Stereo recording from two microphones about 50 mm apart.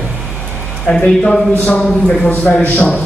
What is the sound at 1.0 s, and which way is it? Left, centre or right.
Speech, centre.